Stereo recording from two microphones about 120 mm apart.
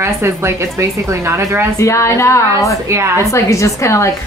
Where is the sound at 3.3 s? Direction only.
25° left (ahead or behind).